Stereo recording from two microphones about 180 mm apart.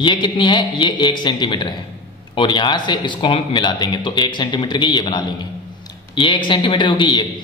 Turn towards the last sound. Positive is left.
turn(degrees=25)  # may be behind; listen again after turning